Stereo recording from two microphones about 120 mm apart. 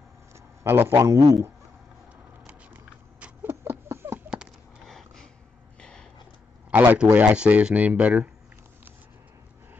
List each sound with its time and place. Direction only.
0.7 s a man's voice: 20° right (ahead or behind)
2.4 s patter: 15° right (ahead or behind)
4.8 s dog: 5° left (ahead or behind)
5.8 s a sound: 5° left (ahead or behind)
6.7 s speech: 15° right (ahead or behind)